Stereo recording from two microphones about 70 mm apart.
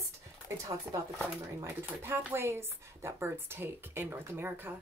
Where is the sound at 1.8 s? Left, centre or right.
Right.